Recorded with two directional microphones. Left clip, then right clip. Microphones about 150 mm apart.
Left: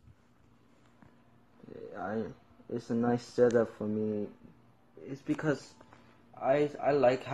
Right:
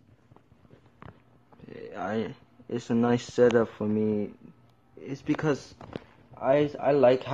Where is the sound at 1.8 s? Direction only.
10° right (ahead or behind).